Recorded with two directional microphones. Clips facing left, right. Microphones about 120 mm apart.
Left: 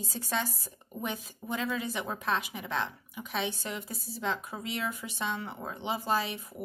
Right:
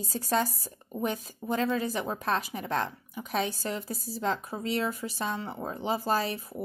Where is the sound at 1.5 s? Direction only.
40° right (ahead or behind).